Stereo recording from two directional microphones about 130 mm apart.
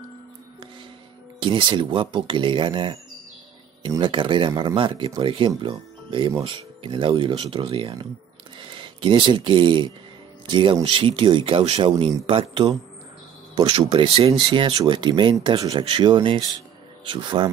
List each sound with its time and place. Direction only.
1.4 s speech: 40° right (ahead or behind)
4.0 s speech: 40° right (ahead or behind)